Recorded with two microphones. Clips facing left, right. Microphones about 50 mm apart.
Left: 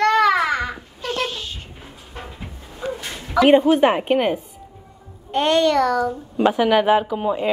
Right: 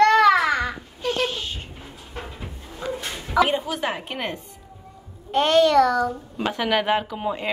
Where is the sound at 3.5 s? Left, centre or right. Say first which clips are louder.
Left 11 dB; left.